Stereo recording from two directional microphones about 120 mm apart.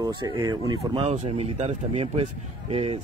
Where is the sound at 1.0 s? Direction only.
65° right (ahead or behind).